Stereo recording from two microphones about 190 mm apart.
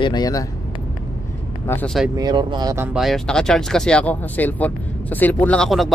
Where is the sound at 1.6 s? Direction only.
10° left (ahead or behind).